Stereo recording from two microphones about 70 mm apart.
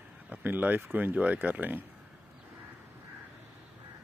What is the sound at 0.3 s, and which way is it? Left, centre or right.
Speech, right.